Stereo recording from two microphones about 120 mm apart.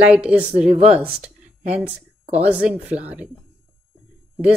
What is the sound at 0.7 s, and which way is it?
Speech, 55° right (ahead or behind).